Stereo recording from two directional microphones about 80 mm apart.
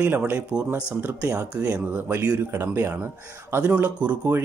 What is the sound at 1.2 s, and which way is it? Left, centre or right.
Speech, right.